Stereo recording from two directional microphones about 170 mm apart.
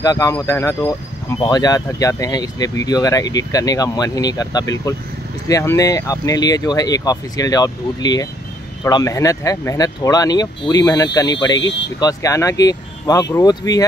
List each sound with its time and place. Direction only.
0.0 s speech: 20° left (ahead or behind)